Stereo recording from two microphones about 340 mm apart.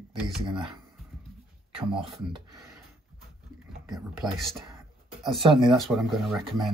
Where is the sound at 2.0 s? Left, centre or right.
Centre.